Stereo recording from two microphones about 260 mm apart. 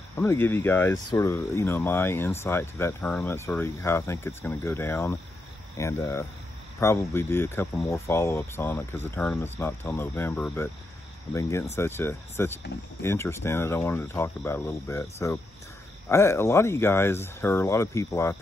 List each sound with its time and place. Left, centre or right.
0.2 s speech: centre